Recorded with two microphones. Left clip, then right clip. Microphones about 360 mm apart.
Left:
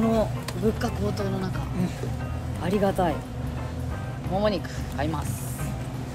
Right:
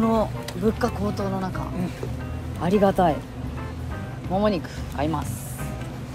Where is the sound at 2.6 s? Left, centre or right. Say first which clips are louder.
Right 5 dB; centre.